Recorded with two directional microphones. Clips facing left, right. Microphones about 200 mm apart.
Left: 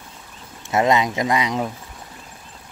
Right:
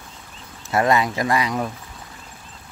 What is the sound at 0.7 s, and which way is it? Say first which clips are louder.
Speech: left 1 dB; 20° left (ahead or behind).